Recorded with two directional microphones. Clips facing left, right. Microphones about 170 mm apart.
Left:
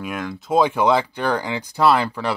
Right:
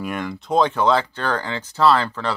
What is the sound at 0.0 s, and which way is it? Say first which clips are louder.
Speech: right 1 dB; centre (ahead or behind).